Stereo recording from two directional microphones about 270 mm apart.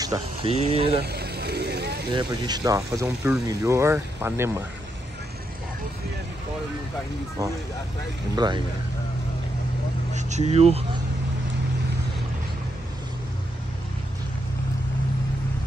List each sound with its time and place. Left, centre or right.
0.0 s speech: centre
1.0 s vehicle: right
2.1 s speech: centre
8.4 s speech: centre
10.1 s speech: right